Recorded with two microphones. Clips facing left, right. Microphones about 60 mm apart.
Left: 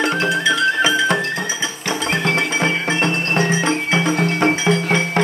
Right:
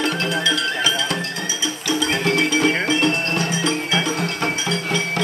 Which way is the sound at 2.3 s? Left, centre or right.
Left.